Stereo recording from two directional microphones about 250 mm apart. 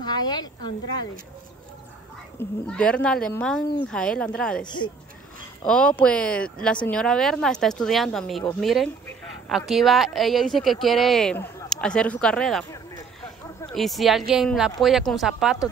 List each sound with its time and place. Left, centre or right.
0.0 s speech: centre
2.3 s speech: centre
4.6 s speech: centre
5.6 s speech: centre
13.7 s speech: centre